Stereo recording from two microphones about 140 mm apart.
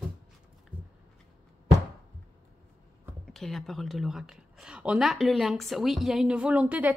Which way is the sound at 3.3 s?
Centre (ahead or behind).